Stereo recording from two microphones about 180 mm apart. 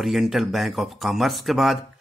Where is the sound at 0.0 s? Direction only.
Centre (ahead or behind).